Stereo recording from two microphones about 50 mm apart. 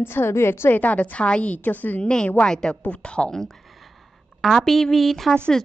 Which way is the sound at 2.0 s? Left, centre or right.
Left.